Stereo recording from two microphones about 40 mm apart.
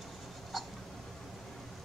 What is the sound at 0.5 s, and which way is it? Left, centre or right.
Hiccup, centre.